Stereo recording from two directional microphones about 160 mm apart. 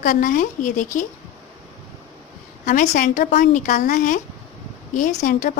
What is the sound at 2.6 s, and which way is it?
A woman's voice, 55° left (ahead or behind).